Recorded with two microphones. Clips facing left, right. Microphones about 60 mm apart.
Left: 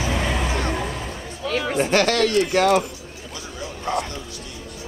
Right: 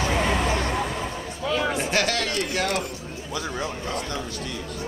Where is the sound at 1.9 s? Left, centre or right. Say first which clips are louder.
Left 9 dB; left.